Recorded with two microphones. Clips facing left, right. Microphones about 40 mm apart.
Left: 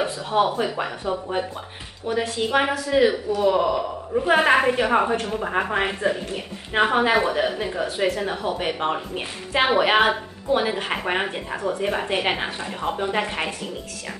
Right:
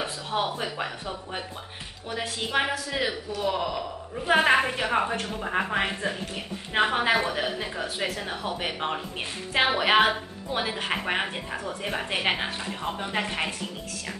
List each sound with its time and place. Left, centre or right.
0.0 s a man's voice: centre
4.3 s speech: centre